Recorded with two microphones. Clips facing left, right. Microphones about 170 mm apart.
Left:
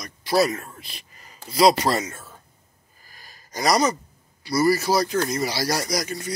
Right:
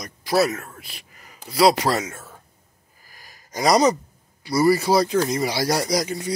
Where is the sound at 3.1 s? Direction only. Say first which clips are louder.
Even; 10° right (ahead or behind).